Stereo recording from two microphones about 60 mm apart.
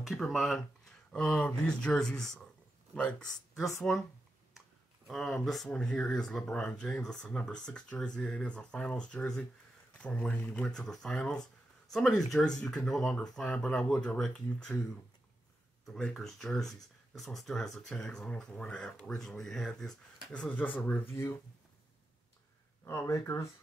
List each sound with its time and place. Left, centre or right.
0.0 s speech: centre
1.1 s speech: centre
3.0 s speech: centre
3.5 s speech: centre
4.6 s clicking: centre
5.4 s speech: centre
5.7 s speech: centre
16.0 s speech: centre
20.4 s speech: left
21.1 s speech: left
23.0 s speech: left